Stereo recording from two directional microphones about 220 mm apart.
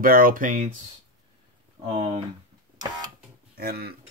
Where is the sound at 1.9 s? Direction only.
25° right (ahead or behind).